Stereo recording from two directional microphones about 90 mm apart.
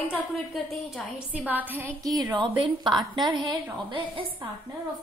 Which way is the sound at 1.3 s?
20° right (ahead or behind).